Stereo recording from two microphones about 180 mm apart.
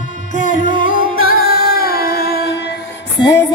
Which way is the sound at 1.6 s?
60° left (ahead or behind).